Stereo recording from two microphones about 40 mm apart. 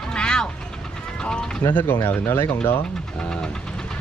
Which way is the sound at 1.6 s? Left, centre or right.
Left.